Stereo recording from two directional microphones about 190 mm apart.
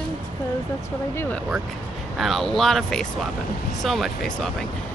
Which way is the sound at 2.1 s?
Centre (ahead or behind).